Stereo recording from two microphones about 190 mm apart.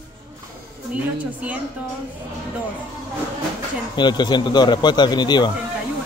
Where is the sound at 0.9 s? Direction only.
5° right (ahead or behind).